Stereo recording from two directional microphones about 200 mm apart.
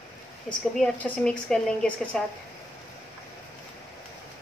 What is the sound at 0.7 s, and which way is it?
Speech, 5° left (ahead or behind).